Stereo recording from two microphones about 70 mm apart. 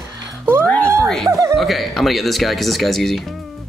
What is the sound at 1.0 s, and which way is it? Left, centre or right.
Music, centre.